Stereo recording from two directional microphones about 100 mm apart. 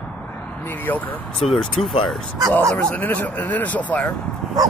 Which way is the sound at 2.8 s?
15° left (ahead or behind).